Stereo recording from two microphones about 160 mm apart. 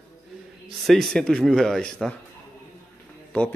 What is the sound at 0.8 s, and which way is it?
Speech, centre (ahead or behind).